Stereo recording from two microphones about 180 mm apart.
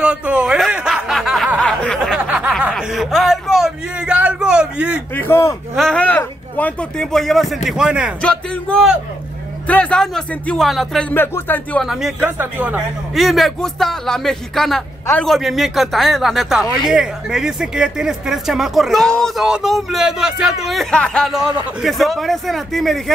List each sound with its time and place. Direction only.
0.0 s snicker: 5° right (ahead or behind)
2.1 s snicker: 10° right (ahead or behind)
2.7 s a sound: centre (ahead or behind)
5.1 s a sound: 15° left (ahead or behind)
5.8 s speech: 5° left (ahead or behind)
11.9 s speech: 5° right (ahead or behind)